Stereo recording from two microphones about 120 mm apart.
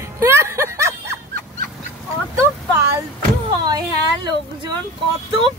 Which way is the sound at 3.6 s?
35° right (ahead or behind).